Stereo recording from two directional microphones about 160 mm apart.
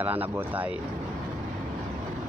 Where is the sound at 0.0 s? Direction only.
10° right (ahead or behind).